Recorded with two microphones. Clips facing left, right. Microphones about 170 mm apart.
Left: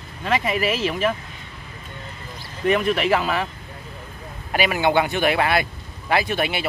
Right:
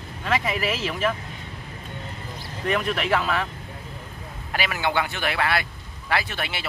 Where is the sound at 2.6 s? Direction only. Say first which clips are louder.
Left 5 dB; centre (ahead or behind).